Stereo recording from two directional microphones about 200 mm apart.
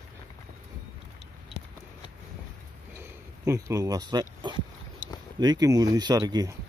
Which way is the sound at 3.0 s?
15° right (ahead or behind).